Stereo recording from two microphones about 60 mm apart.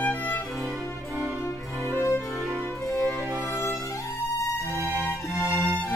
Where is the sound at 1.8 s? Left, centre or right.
Left.